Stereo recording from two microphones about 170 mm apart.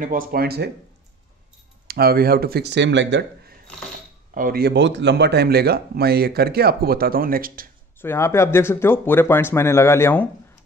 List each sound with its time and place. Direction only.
0.0 s speech: 55° right (ahead or behind)
1.9 s speech: 65° right (ahead or behind); by 3.5 s 90° right
4.3 s speech: 55° right (ahead or behind)
8.0 s speech: 15° left (ahead or behind)